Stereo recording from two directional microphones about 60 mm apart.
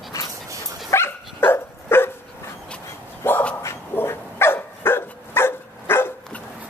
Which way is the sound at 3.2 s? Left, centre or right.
Left.